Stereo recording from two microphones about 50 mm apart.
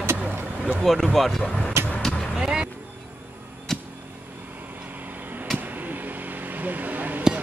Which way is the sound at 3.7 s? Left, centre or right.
Centre.